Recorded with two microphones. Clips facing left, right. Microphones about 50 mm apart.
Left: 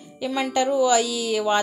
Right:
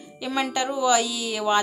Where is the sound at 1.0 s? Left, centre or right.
Left.